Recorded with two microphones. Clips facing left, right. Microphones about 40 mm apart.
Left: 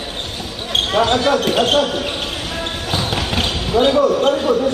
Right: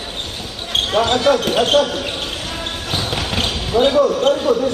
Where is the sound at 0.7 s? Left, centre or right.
Centre.